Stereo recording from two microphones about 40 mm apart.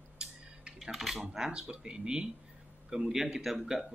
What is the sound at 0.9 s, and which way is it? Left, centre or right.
A man's voice, centre.